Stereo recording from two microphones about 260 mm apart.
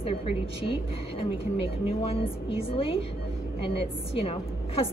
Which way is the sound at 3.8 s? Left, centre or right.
Left.